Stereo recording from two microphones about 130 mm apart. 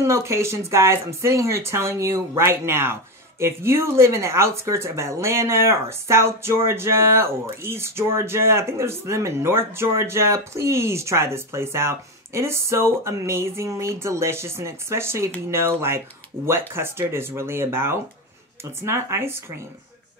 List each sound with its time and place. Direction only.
0.0 s speech: 20° right (ahead or behind)